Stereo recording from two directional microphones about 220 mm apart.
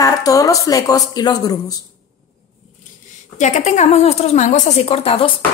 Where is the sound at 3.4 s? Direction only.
35° left (ahead or behind).